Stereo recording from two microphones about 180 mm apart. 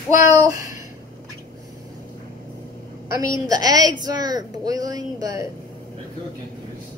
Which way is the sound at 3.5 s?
20° right (ahead or behind).